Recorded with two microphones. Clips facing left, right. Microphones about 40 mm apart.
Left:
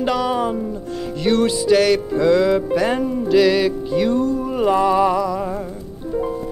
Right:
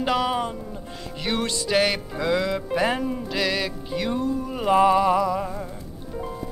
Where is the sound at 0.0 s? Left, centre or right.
Centre.